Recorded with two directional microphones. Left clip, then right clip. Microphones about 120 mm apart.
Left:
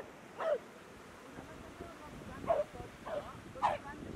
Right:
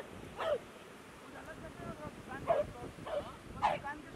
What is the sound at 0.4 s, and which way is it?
Bow-wow, 10° right (ahead or behind).